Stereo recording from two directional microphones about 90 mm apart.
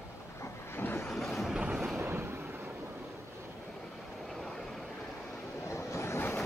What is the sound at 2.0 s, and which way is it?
Vehicle, 25° right (ahead or behind).